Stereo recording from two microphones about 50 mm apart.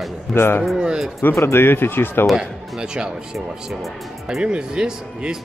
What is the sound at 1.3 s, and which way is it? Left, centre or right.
Speech, left.